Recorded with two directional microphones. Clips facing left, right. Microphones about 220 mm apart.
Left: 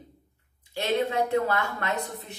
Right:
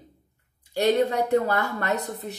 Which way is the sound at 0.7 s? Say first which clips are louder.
Right 4 dB; 40° right (ahead or behind).